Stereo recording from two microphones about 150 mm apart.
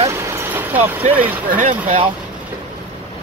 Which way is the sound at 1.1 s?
10° right (ahead or behind).